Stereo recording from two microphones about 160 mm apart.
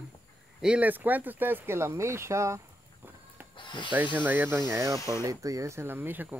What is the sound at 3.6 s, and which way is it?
Snake, 30° left (ahead or behind).